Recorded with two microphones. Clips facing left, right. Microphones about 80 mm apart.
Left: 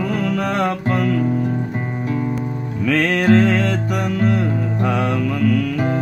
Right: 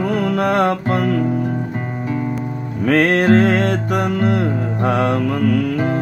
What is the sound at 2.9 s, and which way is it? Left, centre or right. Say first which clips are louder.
Music: right 2 dB; right.